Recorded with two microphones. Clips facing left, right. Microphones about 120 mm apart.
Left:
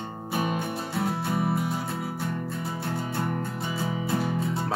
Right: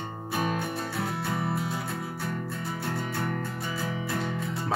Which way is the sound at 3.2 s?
20° left (ahead or behind).